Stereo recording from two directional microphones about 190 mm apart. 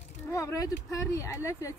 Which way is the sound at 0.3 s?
15° left (ahead or behind).